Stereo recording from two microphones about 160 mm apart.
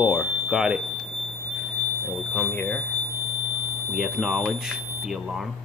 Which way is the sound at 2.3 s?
10° left (ahead or behind).